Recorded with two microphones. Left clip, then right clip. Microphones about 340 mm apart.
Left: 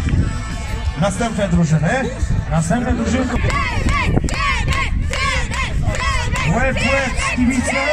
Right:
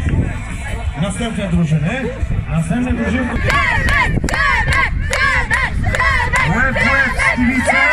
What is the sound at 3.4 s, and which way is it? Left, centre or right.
Battle cry, right.